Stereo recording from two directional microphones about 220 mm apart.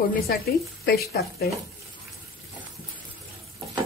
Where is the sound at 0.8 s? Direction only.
45° left (ahead or behind).